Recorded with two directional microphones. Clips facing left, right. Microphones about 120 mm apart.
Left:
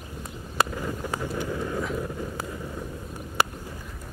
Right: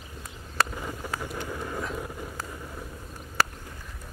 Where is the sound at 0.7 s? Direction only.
5° right (ahead or behind).